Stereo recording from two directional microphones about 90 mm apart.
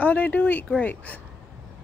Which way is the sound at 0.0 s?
15° left (ahead or behind).